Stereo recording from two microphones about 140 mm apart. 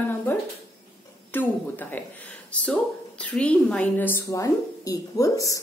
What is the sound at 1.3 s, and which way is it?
A woman's voice, 15° left (ahead or behind).